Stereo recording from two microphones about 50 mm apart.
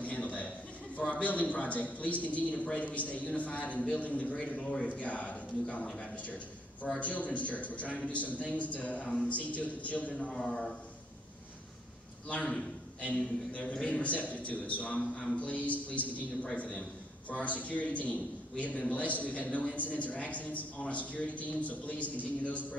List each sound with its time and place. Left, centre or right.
0.0 s a sound: left
1.1 s a man's voice: left
4.6 s a man's voice: left
10.3 s a man's voice: centre
12.3 s a man's voice: left
17.3 s a man's voice: left